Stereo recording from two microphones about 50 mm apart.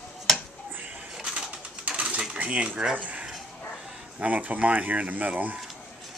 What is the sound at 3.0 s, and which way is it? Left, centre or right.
Speech, right.